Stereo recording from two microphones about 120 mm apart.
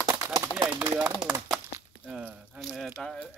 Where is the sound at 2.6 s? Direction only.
Centre (ahead or behind).